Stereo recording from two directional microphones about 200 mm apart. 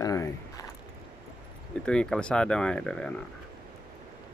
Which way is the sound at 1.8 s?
5° left (ahead or behind).